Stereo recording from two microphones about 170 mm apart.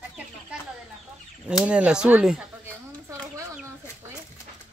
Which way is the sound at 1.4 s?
5° right (ahead or behind).